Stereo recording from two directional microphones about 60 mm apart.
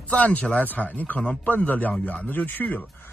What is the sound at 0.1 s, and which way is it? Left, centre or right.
Speech, left.